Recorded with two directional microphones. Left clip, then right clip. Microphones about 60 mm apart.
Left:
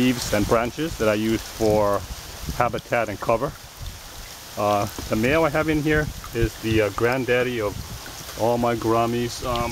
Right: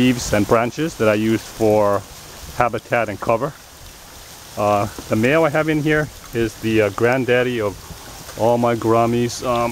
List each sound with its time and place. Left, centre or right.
0.0 s speech: centre
4.6 s speech: centre
6.3 s speech: centre